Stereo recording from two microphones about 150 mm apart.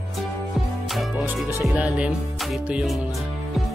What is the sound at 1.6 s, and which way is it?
Speech, 10° right (ahead or behind).